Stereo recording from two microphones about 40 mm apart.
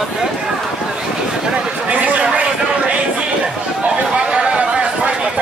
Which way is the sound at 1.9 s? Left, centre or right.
Right.